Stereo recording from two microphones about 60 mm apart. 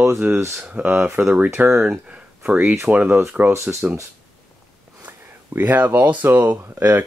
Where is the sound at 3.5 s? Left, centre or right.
Right.